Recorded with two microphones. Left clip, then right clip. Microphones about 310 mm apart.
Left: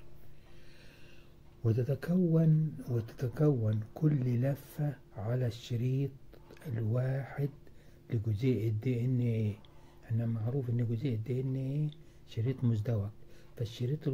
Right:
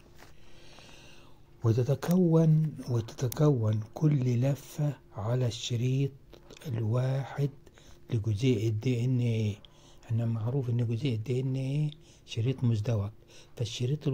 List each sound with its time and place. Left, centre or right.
1.6 s speech: right